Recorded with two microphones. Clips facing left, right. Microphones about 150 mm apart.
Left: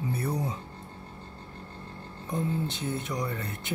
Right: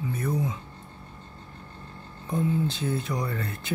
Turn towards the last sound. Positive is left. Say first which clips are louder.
# right 2 dB
turn(degrees=20)  # may be behind; listen again after turning